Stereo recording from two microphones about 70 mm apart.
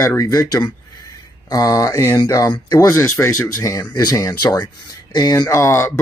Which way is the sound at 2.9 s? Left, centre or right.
Left.